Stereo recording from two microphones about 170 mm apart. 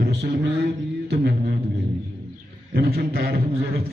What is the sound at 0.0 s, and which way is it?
Speech, 70° right (ahead or behind).